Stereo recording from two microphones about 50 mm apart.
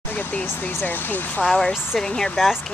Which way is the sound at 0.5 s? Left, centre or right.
Left.